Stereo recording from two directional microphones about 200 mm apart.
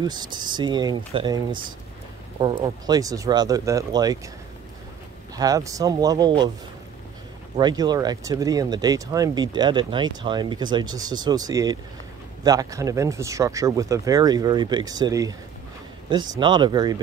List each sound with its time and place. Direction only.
0.0 s speech: 20° right (ahead or behind)
5.3 s speech: 15° right (ahead or behind)
7.5 s speech: 20° right (ahead or behind)